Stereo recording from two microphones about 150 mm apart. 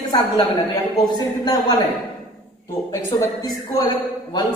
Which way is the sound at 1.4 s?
25° left (ahead or behind).